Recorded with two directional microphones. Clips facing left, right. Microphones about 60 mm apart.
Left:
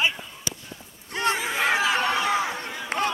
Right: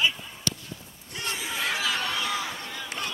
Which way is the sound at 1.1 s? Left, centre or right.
Left.